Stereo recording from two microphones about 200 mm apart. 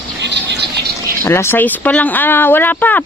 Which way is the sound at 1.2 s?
10° left (ahead or behind).